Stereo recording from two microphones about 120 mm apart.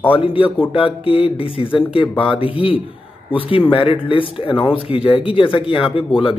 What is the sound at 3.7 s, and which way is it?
Speech, 45° left (ahead or behind).